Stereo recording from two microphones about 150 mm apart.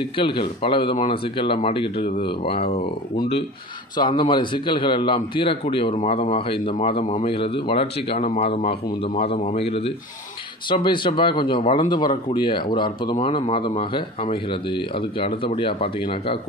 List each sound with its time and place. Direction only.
0.0 s speech: 35° left (ahead or behind)
3.9 s speech: 30° left (ahead or behind)